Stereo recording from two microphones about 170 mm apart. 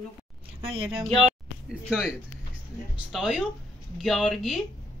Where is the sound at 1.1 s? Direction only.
Centre (ahead or behind).